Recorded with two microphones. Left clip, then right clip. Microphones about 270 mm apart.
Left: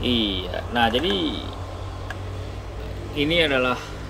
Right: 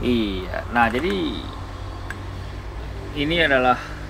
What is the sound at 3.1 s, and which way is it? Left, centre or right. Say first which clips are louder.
Speech: right 1 dB; centre.